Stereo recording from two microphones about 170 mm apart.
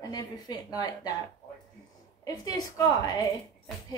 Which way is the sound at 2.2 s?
20° left (ahead or behind).